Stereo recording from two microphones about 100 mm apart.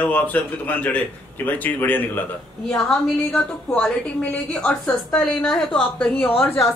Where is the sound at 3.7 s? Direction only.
10° left (ahead or behind).